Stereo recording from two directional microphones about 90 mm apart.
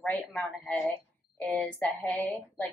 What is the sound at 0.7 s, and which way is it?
A woman's voice, 25° left (ahead or behind).